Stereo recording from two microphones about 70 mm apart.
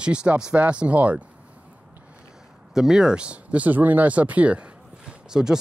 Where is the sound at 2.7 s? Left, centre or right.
Centre.